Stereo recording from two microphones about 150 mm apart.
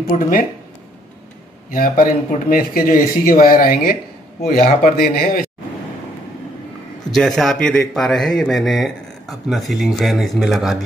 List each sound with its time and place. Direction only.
0.1 s speech: 65° left (ahead or behind)
1.7 s speech: 65° left (ahead or behind)
4.8 s speech: 85° left
7.1 s speech: centre (ahead or behind)